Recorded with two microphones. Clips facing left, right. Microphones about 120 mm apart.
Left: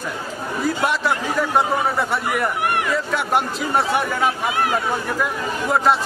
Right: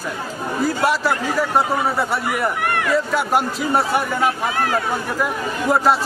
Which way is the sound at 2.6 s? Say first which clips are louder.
Even; 20° left (ahead or behind).